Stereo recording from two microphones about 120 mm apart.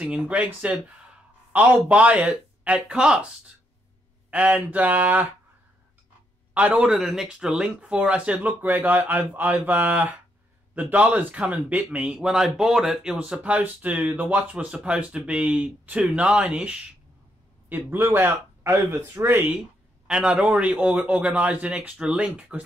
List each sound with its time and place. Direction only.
0.0 s a man's voice: 10° right (ahead or behind)
4.3 s speech: 10° right (ahead or behind)
6.5 s speech: 10° right (ahead or behind)